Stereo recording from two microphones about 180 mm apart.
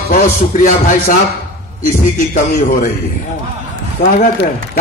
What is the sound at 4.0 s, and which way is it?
Speech, 60° left (ahead or behind).